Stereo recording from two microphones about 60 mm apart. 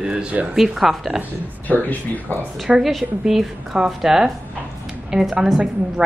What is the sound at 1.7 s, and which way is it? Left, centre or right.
Speech, left.